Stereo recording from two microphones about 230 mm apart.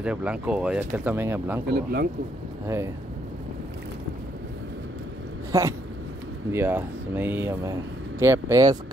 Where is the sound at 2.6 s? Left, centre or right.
Centre.